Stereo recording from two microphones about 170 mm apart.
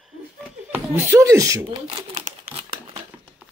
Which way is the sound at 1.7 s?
30° right (ahead or behind).